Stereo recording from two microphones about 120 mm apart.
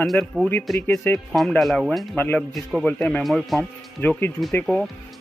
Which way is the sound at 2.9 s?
10° left (ahead or behind).